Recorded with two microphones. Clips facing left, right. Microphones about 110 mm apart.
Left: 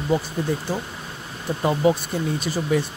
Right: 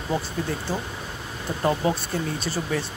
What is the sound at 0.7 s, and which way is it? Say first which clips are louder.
Speech: left 2 dB; 15° left (ahead or behind).